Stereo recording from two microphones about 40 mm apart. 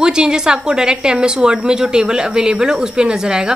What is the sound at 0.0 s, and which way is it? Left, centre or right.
A woman's voice, centre.